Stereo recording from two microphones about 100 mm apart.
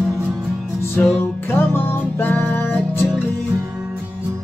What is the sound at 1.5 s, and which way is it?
Music, 20° left (ahead or behind).